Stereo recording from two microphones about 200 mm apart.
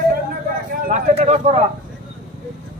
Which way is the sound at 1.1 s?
35° right (ahead or behind).